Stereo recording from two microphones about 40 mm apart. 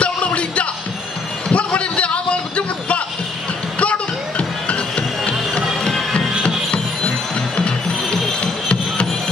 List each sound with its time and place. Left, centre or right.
0.0 s music: left
1.5 s a sound: left
3.8 s music: left
7.3 s mechanisms: left
8.4 s music: left